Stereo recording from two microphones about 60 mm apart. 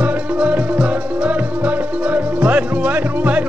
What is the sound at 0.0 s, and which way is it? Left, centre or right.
Music, right.